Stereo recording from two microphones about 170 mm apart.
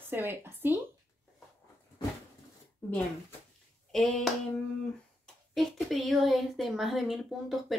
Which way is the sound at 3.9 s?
Centre (ahead or behind).